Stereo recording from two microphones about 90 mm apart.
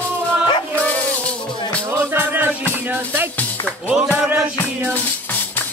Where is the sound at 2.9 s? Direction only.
20° right (ahead or behind).